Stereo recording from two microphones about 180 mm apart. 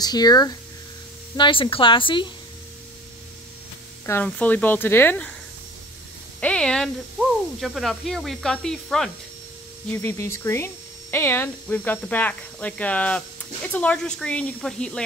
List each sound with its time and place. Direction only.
0.0 s a woman's voice: 20° left (ahead or behind)
4.0 s speech: 10° left (ahead or behind)
6.4 s speech: 5° left (ahead or behind)
9.8 s speech: 15° left (ahead or behind)